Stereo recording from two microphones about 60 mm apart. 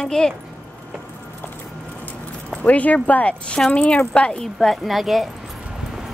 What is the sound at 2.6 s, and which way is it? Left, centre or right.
A woman's voice, left.